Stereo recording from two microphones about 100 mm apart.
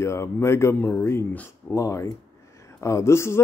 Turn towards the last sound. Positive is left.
turn(degrees=30)  # may be behind; listen again after turning